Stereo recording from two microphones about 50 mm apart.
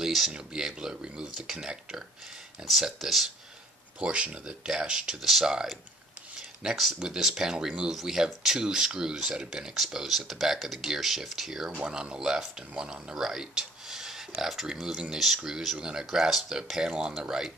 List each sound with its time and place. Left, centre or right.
0.0 s a sound: centre
0.3 s speech: centre
4.0 s speech: right
4.5 s speech: centre
5.2 s speech: centre
7.9 s speech: centre